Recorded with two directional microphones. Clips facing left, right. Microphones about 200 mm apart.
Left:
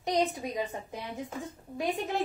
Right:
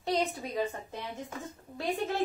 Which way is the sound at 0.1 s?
15° left (ahead or behind).